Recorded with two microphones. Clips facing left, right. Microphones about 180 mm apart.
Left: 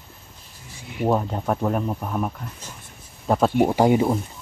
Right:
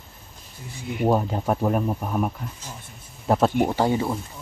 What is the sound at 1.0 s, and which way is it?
Speech, 5° right (ahead or behind).